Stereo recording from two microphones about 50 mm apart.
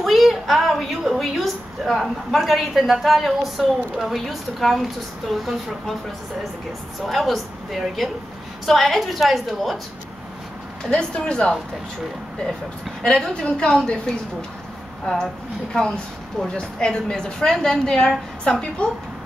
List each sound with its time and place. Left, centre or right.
0.0 s a woman's voice: centre
7.1 s a woman's voice: centre
10.9 s speech: centre
13.0 s a woman's voice: centre